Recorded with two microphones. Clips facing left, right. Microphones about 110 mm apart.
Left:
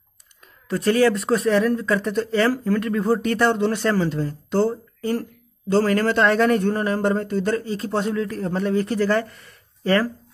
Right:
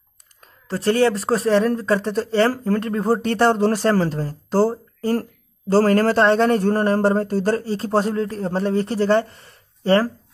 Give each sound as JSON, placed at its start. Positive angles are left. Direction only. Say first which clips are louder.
{"t": 0.7, "sound": "speech", "louder": "even", "side_deg": -30}